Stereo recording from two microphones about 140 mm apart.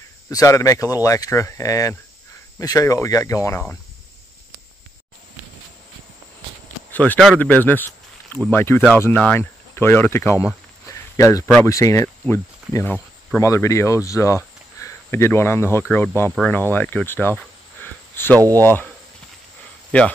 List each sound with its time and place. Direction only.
0.3 s speech: 25° left (ahead or behind)
6.9 s speech: 10° left (ahead or behind)
19.9 s speech: 10° left (ahead or behind)